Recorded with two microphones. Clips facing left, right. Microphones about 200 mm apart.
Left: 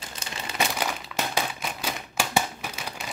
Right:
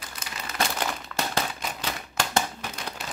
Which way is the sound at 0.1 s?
30° left (ahead or behind).